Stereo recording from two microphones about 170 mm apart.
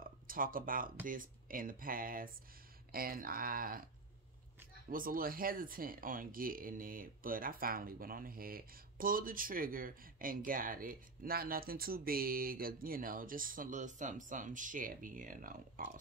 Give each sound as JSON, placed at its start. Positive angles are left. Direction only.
{"t": 0.0, "sound": "a sound", "side_deg": -55}
{"t": 1.0, "sound": "speech", "side_deg": -55}
{"t": 4.8, "sound": "speech", "side_deg": -55}